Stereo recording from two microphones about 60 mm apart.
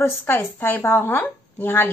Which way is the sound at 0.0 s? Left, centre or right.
Left.